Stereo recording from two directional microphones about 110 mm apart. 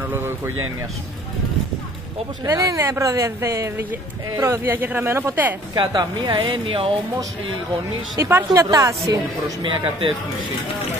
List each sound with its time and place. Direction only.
2.4 s a woman's voice: 30° right (ahead or behind)
5.8 s a woman's voice: 40° right (ahead or behind)
8.2 s a woman's voice: 25° right (ahead or behind)
9.6 s a woman's voice: 50° right (ahead or behind)